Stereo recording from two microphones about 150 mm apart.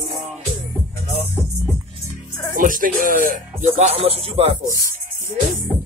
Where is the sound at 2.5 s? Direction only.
65° right (ahead or behind); by 4.5 s 40° right (ahead or behind).